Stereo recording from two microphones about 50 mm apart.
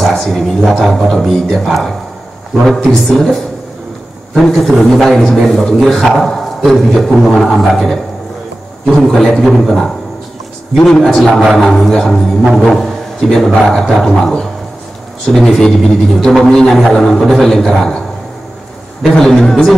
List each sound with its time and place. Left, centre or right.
0.1 s a man's voice: centre
4.4 s a man's voice: centre
19.1 s a man's voice: centre